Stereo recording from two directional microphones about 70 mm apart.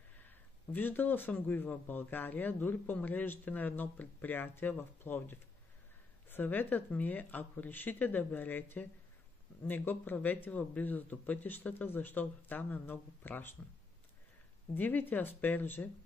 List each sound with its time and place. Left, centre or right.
0.2 s speech: left
14.7 s speech: left